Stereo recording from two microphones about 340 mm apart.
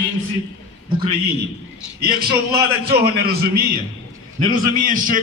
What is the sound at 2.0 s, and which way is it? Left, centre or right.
Speech, right.